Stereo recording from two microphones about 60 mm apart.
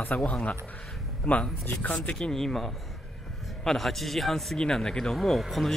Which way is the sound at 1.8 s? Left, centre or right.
Left.